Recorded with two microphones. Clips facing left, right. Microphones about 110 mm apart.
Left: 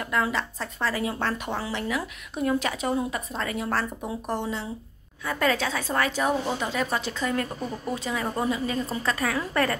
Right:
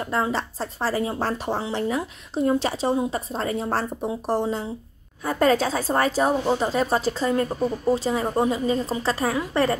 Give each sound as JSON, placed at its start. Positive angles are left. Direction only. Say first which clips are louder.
{"t": 0.0, "sound": "a woman's voice", "louder": "right 2 dB", "side_deg": -30}